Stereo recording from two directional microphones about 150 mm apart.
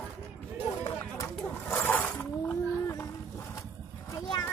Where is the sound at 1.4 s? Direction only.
15° left (ahead or behind).